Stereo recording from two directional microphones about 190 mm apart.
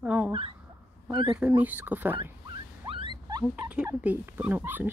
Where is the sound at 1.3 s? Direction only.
5° right (ahead or behind).